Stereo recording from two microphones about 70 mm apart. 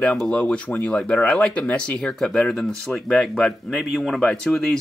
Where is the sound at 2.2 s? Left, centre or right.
Centre.